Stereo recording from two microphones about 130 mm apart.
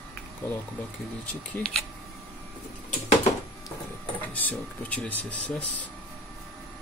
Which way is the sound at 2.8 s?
60° left (ahead or behind).